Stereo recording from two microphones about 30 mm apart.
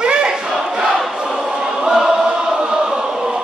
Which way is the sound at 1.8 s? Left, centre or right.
Centre.